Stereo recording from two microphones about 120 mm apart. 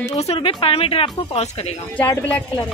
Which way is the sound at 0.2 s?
55° left (ahead or behind).